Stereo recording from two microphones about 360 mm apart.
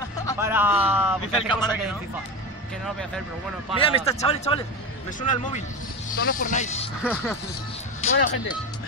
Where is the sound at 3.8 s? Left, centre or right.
Centre.